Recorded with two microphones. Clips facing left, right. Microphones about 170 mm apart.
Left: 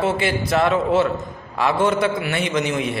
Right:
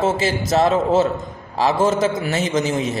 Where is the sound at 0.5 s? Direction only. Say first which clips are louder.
Right 2 dB; 30° right (ahead or behind).